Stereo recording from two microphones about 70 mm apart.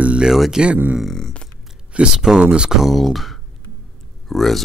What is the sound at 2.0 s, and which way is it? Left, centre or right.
Speech, centre.